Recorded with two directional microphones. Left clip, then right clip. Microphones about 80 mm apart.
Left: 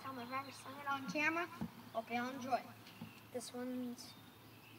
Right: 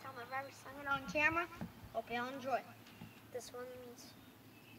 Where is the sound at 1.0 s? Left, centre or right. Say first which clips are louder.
Right 4 dB; right.